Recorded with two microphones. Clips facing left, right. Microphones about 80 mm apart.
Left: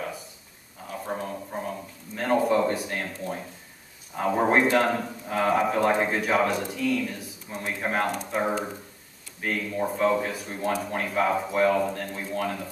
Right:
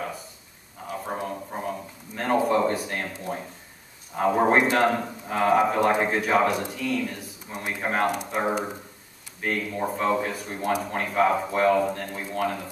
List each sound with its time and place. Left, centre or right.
1.0 s a sound: centre
2.1 s a man's voice: centre
7.4 s a man's voice: centre